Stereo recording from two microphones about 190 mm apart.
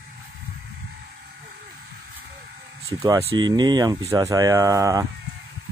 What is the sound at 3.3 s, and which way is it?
Speech, 20° right (ahead or behind).